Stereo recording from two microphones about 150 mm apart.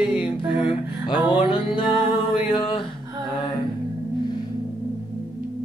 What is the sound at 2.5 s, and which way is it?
Speech, 35° left (ahead or behind).